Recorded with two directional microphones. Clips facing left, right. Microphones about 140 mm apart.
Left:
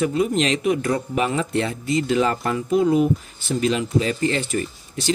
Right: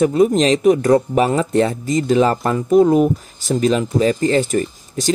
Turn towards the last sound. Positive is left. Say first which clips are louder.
# right 4 dB
turn(degrees=-45)  # may be behind; listen again after turning